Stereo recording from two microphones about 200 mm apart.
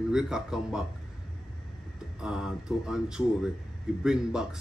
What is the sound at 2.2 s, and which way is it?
Speech, 5° right (ahead or behind).